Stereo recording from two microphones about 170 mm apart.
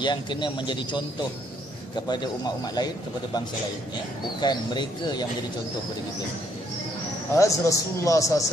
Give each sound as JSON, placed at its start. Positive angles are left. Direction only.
{"t": 0.0, "sound": "a man's voice", "side_deg": 25}
{"t": 2.0, "sound": "a man's voice", "side_deg": 25}
{"t": 4.4, "sound": "a man's voice", "side_deg": 25}
{"t": 7.3, "sound": "a man's voice", "side_deg": 20}